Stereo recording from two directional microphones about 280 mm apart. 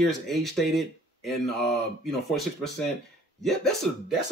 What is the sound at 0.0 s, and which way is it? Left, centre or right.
Speech, centre.